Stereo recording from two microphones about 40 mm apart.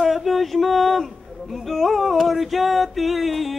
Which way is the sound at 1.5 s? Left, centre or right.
Centre.